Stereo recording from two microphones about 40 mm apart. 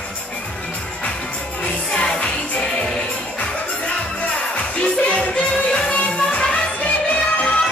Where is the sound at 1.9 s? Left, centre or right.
Left.